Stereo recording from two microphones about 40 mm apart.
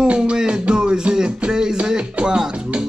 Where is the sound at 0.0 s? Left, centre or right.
Right.